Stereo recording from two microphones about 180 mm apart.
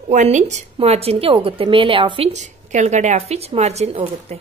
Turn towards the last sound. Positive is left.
turn(degrees=-35)  # may be behind; listen again after turning